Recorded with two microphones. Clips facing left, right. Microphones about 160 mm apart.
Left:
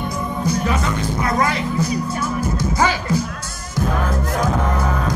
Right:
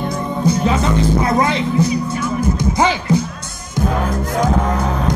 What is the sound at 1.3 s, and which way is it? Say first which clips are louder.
Speech: right 4 dB; 25° right (ahead or behind).